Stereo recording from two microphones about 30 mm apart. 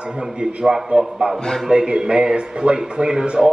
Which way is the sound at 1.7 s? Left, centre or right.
Right.